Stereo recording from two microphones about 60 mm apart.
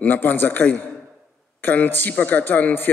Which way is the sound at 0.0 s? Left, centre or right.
Left.